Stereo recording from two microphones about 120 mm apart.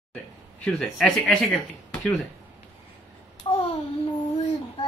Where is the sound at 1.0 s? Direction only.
Centre (ahead or behind).